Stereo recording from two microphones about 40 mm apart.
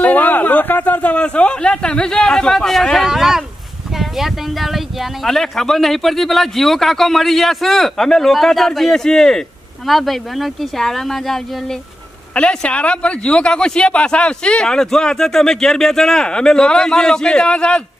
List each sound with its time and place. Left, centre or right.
0.0 s a sound: left
1.1 s speech: left; by 2.8 s centre
3.0 s speech: centre
5.2 s a man's voice: centre
9.8 s a man's voice: centre
12.4 s speech: left